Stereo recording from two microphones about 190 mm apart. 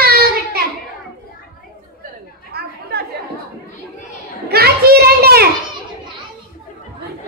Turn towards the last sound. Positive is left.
turn(degrees=-55)  # may be behind; listen again after turning